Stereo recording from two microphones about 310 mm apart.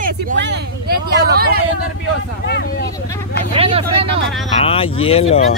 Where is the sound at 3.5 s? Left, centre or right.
Centre.